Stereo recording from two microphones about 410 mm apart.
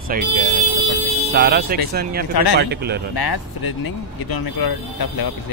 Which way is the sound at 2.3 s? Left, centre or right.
Left.